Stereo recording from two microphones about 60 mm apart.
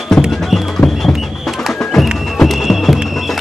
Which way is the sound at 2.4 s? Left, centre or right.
Centre.